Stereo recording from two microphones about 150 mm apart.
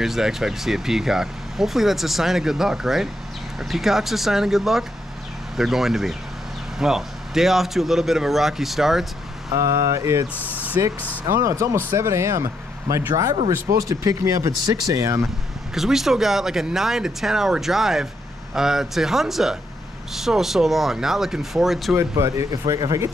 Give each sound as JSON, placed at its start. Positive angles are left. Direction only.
{"t": 0.0, "sound": "speech", "side_deg": 0}
{"t": 9.5, "sound": "speech", "side_deg": -20}
{"t": 10.3, "sound": "speech", "side_deg": 10}
{"t": 10.6, "sound": "vehicle", "side_deg": -10}
{"t": 11.2, "sound": "speech", "side_deg": -20}
{"t": 15.7, "sound": "speech", "side_deg": 0}
{"t": 21.9, "sound": "speech", "side_deg": -20}